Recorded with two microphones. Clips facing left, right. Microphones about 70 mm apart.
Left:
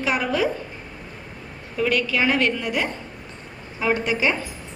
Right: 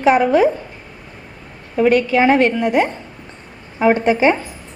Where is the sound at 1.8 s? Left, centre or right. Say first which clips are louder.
Right 8 dB; right.